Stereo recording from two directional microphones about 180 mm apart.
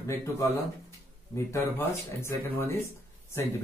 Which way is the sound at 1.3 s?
15° left (ahead or behind).